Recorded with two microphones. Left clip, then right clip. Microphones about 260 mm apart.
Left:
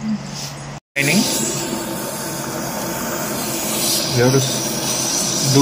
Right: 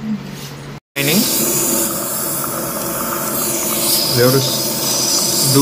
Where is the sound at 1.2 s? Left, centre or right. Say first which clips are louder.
Right 2 dB; centre.